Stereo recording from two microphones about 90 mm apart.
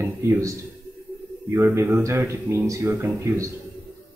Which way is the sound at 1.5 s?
25° right (ahead or behind).